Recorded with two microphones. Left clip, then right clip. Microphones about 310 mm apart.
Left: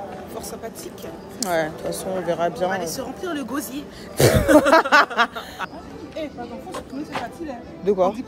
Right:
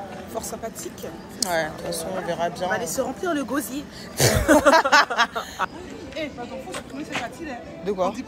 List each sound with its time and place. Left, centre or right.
0.3 s a sound: centre
1.4 s speech: centre
2.7 s speech: centre
4.2 s speech: left
7.8 s speech: centre